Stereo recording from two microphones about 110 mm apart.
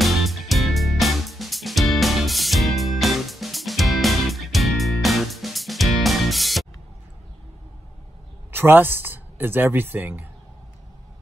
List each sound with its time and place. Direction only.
0.0 s music: centre (ahead or behind)
8.5 s speech: 20° right (ahead or behind)